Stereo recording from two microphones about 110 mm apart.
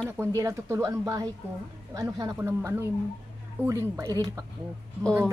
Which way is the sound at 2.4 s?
20° right (ahead or behind).